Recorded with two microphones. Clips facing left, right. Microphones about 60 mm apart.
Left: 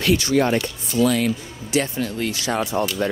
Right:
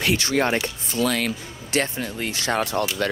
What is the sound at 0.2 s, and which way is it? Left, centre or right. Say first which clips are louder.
Speech: left 3 dB; right.